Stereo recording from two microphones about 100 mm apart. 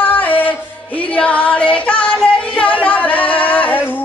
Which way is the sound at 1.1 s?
15° left (ahead or behind).